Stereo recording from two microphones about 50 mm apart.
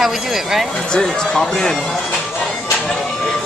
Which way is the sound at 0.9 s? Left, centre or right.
Centre.